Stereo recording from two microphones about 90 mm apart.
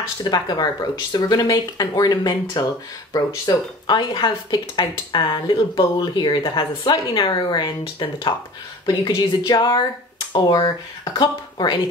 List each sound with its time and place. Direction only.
0.2 s speech: 50° left (ahead or behind)